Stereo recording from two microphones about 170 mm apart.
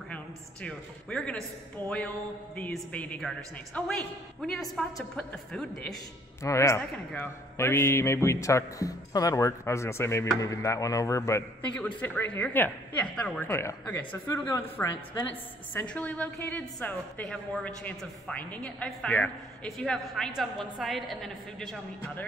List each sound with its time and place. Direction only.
0.1 s a woman's voice: 5° left (ahead or behind)
2.5 s a woman's voice: 10° left (ahead or behind)
6.4 s a woman's voice: 15° left (ahead or behind)